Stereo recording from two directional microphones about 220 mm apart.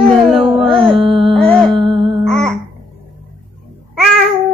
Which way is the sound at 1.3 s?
5° left (ahead or behind).